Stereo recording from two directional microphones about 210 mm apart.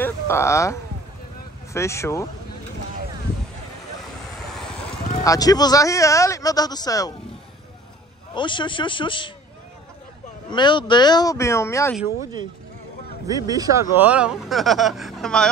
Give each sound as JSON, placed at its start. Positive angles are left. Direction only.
{"t": 0.0, "sound": "a man's voice", "side_deg": 10}
{"t": 5.2, "sound": "a man's voice", "side_deg": 15}
{"t": 8.4, "sound": "speech", "side_deg": 20}
{"t": 10.5, "sound": "speech", "side_deg": 20}
{"t": 13.3, "sound": "speech", "side_deg": -15}